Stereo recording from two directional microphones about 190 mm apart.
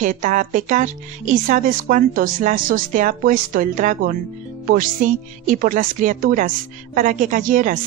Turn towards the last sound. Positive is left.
turn(degrees=-45)  # may be behind; listen again after turning